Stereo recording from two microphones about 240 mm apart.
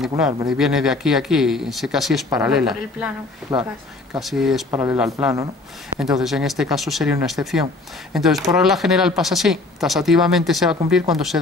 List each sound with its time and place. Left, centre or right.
0.5 s speech: centre
3.5 s speech: centre
4.1 s speech: centre
4.6 s speech: centre